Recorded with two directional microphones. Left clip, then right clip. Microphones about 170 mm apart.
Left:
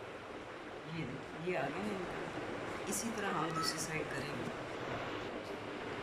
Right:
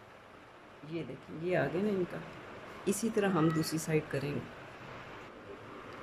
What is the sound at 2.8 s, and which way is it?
Speech, 65° right (ahead or behind).